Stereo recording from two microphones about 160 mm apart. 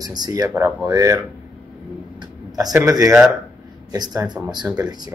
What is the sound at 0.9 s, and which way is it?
Speech, 25° right (ahead or behind).